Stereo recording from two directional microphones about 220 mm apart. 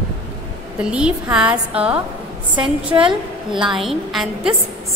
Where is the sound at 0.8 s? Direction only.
5° right (ahead or behind).